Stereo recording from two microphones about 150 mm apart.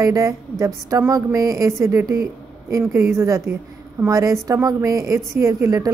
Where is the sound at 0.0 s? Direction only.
20° right (ahead or behind).